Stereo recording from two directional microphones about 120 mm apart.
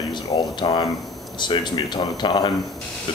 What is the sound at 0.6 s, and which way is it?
Speech, 45° left (ahead or behind).